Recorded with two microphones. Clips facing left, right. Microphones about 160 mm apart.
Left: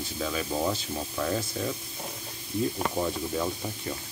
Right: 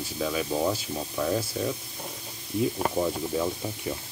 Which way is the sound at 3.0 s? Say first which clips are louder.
Right 2 dB; 10° right (ahead or behind).